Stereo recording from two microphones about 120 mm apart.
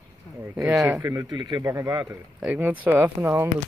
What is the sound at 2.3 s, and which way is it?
Speech, 10° right (ahead or behind).